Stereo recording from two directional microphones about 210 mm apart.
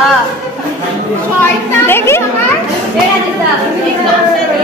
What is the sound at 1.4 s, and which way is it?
Speech, 10° left (ahead or behind).